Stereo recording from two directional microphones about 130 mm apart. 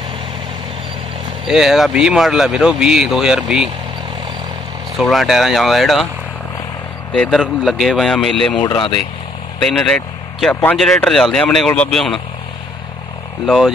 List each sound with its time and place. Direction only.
1.5 s speech: centre (ahead or behind)
4.9 s speech: centre (ahead or behind)
7.1 s speech: 5° left (ahead or behind)
8.5 s speech: 40° left (ahead or behind)
9.6 s speech: 5° left (ahead or behind)
10.5 s speech: 15° left (ahead or behind)
10.8 s speech: 5° left (ahead or behind)
13.5 s speech: 5° left (ahead or behind)